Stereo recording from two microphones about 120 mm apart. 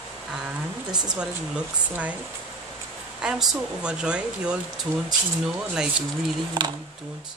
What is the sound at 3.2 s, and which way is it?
Speech, 5° right (ahead or behind).